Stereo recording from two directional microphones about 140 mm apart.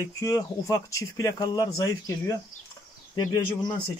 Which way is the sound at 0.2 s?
20° left (ahead or behind).